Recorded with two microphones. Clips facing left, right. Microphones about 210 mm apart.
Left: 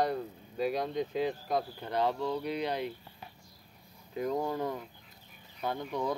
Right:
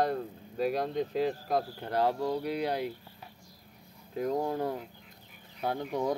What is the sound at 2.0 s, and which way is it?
Speech, 35° right (ahead or behind).